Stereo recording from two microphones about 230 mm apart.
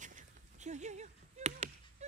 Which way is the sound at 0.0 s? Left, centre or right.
Right.